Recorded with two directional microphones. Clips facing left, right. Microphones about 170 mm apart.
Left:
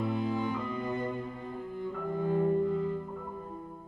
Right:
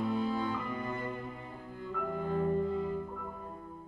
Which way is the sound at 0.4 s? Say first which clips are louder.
Left 2 dB; 15° left (ahead or behind).